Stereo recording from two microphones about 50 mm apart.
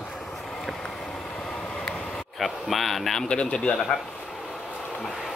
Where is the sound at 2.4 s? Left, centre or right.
Centre.